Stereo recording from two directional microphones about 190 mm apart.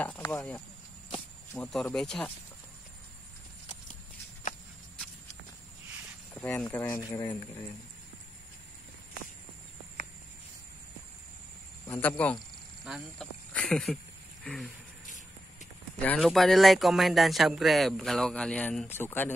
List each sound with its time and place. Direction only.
0.2 s speech: 15° left (ahead or behind)
1.6 s speech: centre (ahead or behind)
6.3 s speech: 10° left (ahead or behind)
11.9 s speech: 10° left (ahead or behind)
12.8 s speech: 5° right (ahead or behind)
13.5 s a sound: 5° left (ahead or behind)
16.0 s speech: 5° left (ahead or behind)